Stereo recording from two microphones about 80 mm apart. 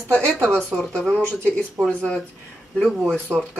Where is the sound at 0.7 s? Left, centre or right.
Centre.